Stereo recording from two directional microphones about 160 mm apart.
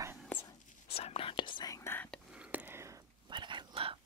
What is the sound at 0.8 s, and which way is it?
Whispering, 40° left (ahead or behind).